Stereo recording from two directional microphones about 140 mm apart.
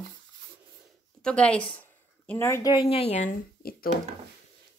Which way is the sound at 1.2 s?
10° left (ahead or behind).